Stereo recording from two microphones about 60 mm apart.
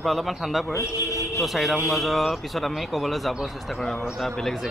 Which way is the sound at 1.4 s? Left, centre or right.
Centre.